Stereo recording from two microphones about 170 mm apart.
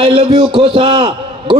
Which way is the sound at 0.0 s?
35° right (ahead or behind).